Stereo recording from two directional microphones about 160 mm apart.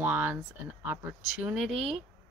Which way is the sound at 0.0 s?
10° right (ahead or behind).